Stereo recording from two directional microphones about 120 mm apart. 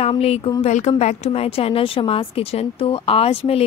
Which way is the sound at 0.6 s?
75° left (ahead or behind).